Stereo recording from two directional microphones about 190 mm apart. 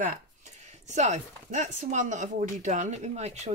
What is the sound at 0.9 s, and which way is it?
Speech, 35° right (ahead or behind).